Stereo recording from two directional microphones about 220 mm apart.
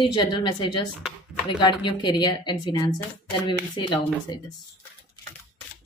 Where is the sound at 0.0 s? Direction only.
20° left (ahead or behind).